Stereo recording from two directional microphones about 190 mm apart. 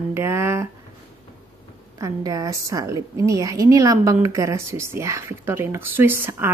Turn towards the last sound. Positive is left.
turn(degrees=-10)  # may be behind; listen again after turning